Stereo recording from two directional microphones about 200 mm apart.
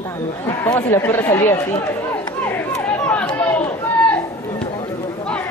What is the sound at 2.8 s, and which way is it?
Chatter, 5° left (ahead or behind).